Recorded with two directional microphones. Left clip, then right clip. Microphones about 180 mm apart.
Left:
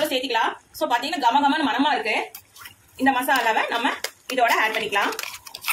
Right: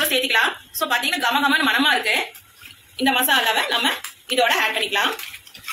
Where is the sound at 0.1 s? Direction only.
30° left (ahead or behind).